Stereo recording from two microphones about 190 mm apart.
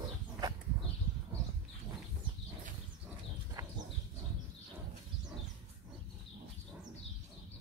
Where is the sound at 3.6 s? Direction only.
15° right (ahead or behind).